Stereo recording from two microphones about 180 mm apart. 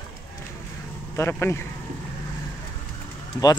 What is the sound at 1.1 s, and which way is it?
Speech, 15° left (ahead or behind).